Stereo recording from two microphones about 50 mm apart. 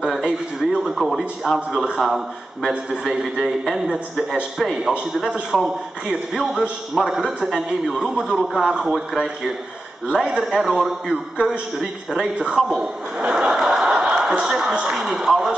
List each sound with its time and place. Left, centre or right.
0.9 s a man's voice: centre
5.5 s a man's voice: centre
6.0 s a man's voice: centre
7.0 s a man's voice: centre
7.4 s a man's voice: centre
10.1 s a man's voice: centre
10.4 s a man's voice: centre
13.5 s a sound: centre
14.4 s a man's voice: centre